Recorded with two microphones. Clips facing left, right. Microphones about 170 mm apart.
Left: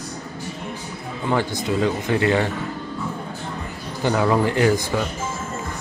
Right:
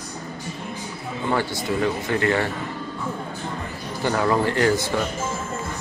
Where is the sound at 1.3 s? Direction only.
15° left (ahead or behind).